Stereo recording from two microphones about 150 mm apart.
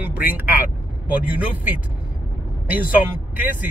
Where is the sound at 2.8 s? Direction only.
10° right (ahead or behind).